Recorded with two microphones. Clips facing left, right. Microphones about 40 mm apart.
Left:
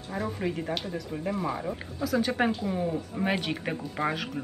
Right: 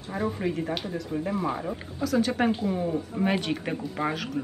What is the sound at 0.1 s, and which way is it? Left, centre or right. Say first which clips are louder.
Speech: right 3 dB; centre.